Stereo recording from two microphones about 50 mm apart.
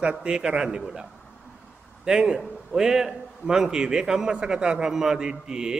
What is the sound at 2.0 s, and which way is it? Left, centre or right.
A man's voice, centre.